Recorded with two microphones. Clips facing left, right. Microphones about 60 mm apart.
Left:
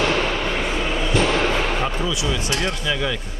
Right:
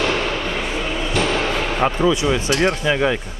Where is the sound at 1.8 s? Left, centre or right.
Right.